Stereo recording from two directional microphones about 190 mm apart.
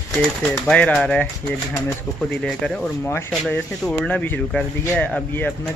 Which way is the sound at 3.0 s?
15° left (ahead or behind).